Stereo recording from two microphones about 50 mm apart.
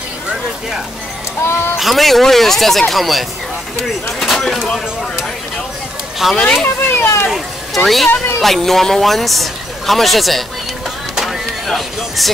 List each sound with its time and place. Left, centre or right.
1.8 s a man's voice: centre
4.2 s a sound: centre
6.3 s speech: centre
6.9 s children playing: left
7.2 s a man's voice: centre
11.2 s a sound: centre